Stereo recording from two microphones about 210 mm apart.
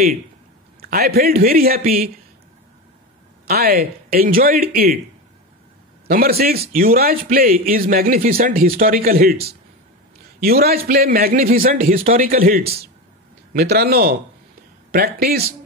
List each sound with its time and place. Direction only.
0.7 s a man's voice: 45° right (ahead or behind)
3.4 s a man's voice: 45° right (ahead or behind)
6.0 s a man's voice: 45° right (ahead or behind)